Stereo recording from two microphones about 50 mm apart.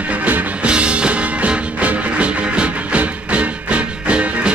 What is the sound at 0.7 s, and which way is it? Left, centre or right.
Music, right.